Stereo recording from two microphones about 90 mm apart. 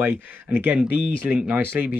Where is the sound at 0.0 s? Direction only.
20° right (ahead or behind).